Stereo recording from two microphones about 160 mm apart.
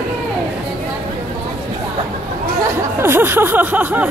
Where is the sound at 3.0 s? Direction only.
15° right (ahead or behind).